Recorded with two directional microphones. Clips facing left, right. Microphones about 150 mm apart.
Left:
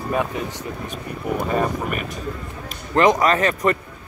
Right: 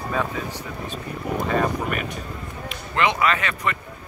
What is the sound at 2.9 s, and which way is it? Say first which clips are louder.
Speech: left 5 dB; 40° left (ahead or behind).